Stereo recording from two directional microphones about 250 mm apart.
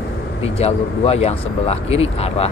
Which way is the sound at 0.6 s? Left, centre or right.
Left.